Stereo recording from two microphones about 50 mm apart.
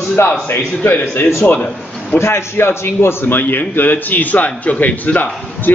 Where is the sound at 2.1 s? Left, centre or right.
Left.